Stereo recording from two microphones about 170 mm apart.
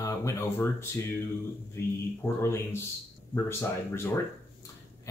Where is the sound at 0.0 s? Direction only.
20° left (ahead or behind).